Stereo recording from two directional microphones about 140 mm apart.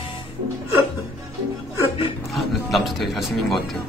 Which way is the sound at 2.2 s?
Centre (ahead or behind).